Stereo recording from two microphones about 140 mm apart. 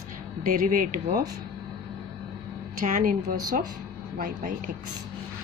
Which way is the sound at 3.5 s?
85° right.